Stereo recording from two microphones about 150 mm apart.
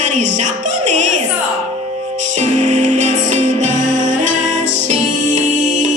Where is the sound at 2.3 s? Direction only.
50° right (ahead or behind).